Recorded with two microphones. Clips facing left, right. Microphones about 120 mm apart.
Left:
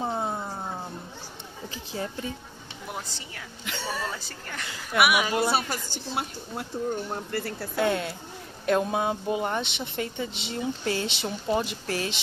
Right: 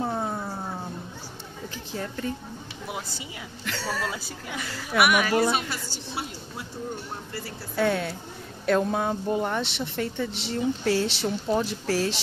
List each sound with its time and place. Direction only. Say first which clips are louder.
0.0 s a sound: right 1 dB; 10° left (ahead or behind)
2.2 s speech: right 4 dB; 5° left (ahead or behind)
3.6 s speech: right 2 dB; centre (ahead or behind)
5.1 s speech: right 2 dB; 20° left (ahead or behind)
5.5 s a woman's voice: left 1 dB; 35° left (ahead or behind)
6.1 s a woman's voice: left 3 dB; 55° left (ahead or behind)
7.8 s speech: right 1 dB; centre (ahead or behind)